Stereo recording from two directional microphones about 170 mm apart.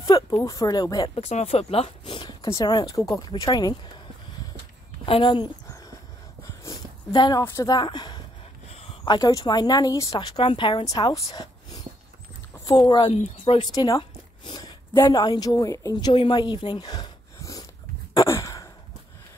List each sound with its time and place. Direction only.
0.0 s speech: 25° left (ahead or behind)
1.2 s speech: 35° left (ahead or behind)
5.0 s speech: 30° left (ahead or behind)
6.6 s a sound: 20° left (ahead or behind)
7.4 s a woman's voice: 20° left (ahead or behind)
18.1 s sigh: 20° left (ahead or behind)